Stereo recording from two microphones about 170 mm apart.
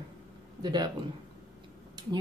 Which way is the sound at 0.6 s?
25° right (ahead or behind).